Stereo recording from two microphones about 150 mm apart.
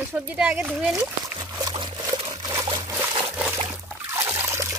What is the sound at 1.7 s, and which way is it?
Liquid, 30° right (ahead or behind).